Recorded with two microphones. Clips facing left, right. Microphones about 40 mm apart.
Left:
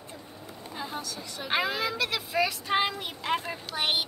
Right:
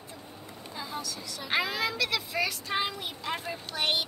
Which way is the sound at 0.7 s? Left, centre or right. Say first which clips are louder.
Left 1 dB; left.